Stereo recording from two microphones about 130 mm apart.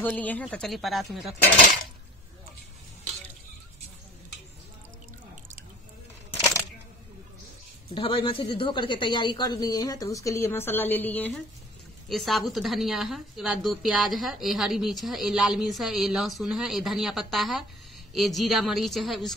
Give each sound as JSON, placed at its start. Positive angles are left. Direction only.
{"t": 0.0, "sound": "a woman's voice", "side_deg": 10}
{"t": 7.9, "sound": "speech", "side_deg": 40}
{"t": 12.1, "sound": "a woman's voice", "side_deg": 0}